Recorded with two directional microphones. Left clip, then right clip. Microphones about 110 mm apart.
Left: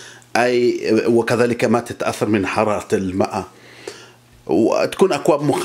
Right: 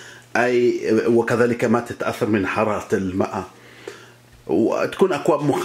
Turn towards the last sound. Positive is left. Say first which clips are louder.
# left 2 dB
turn(degrees=25)  # may be behind; listen again after turning